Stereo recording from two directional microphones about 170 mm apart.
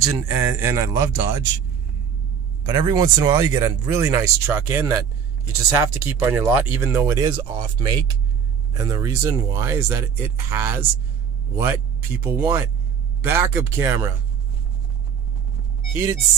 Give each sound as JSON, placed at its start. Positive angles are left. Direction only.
{"t": 0.0, "sound": "speech", "side_deg": -15}
{"t": 2.6, "sound": "speech", "side_deg": -25}